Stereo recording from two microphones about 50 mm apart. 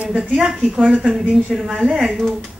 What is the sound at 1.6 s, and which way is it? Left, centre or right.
Speech, centre.